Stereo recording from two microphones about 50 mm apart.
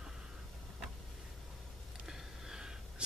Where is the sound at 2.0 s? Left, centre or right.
Centre.